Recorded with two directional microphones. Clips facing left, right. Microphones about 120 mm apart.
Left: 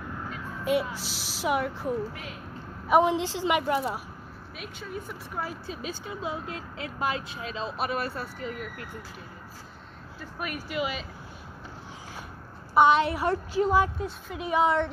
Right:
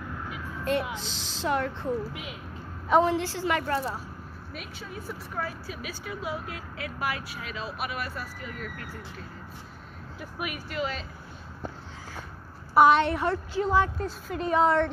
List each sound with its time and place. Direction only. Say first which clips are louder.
0.9 s a woman's voice: even; 10° left (ahead or behind)
4.6 s a woman's voice: left 3 dB; centre (ahead or behind)
5.7 s speech: left 1 dB; 30° left (ahead or behind)
10.7 s a woman's voice: left 2 dB; 10° left (ahead or behind)
12.7 s a woman's voice: right 1 dB; centre (ahead or behind)